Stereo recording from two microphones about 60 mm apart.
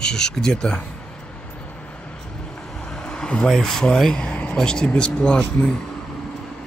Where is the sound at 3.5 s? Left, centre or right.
Centre.